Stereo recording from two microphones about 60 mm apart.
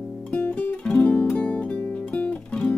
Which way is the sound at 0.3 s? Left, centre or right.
Left.